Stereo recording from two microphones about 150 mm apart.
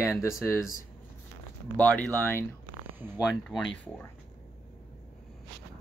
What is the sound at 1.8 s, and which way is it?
Speech, 10° left (ahead or behind).